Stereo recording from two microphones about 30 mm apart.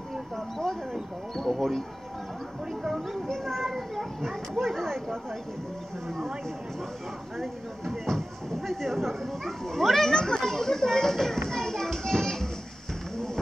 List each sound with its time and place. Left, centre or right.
1.3 s speech: centre
3.3 s speech: centre
7.3 s speech: centre
10.1 s a child's voice: left
10.4 s children playing: centre